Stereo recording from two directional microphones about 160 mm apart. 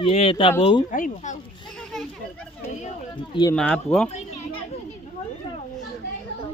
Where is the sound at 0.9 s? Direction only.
50° left (ahead or behind).